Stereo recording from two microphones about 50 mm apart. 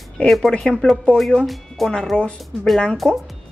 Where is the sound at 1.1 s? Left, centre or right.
Centre.